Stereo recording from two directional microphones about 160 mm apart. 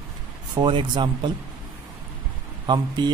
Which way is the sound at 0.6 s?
30° right (ahead or behind).